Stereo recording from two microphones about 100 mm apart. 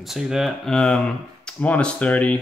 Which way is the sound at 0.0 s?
5° right (ahead or behind).